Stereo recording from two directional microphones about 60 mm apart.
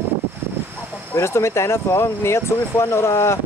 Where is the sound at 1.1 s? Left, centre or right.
Left.